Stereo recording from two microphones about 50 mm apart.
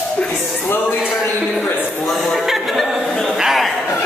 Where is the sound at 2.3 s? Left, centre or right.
Centre.